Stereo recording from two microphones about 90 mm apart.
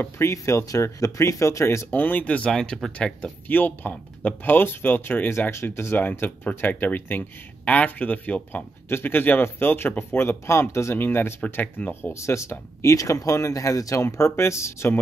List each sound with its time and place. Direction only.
0.0 s speech: 30° left (ahead or behind)
1.9 s speech: 20° left (ahead or behind)